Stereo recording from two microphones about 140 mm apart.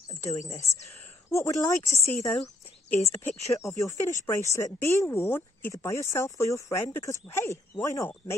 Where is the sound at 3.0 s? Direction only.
20° left (ahead or behind).